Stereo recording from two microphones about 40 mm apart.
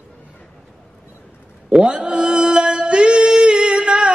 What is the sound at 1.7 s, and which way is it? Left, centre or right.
Music, right.